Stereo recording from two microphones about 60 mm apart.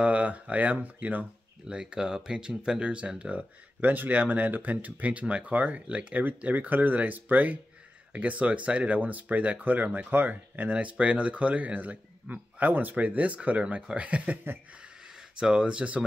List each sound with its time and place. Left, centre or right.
0.0 s speech: right
1.7 s speech: centre
14.8 s a sound: centre